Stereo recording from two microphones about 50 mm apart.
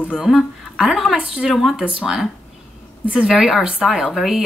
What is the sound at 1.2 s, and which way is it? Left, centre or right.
Speech, centre.